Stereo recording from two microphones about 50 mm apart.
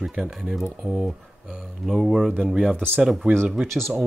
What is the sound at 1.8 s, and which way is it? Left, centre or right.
Speech, centre.